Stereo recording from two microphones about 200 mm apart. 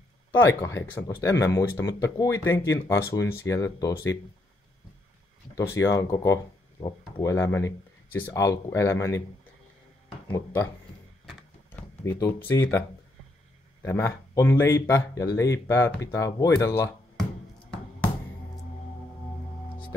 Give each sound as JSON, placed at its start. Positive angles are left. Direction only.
{"t": 0.3, "sound": "speech", "side_deg": 15}
{"t": 5.6, "sound": "speech", "side_deg": 15}
{"t": 11.7, "sound": "speech", "side_deg": 15}
{"t": 13.8, "sound": "speech", "side_deg": 15}